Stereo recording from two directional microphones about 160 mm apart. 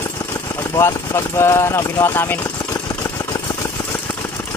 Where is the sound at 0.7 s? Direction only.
15° left (ahead or behind).